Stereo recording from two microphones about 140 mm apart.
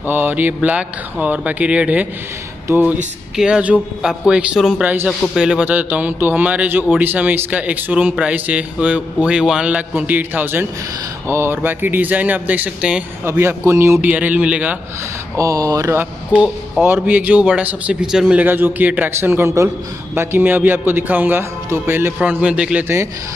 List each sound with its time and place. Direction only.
0.0 s a man's voice: 15° right (ahead or behind)
15.3 s speech: 25° right (ahead or behind)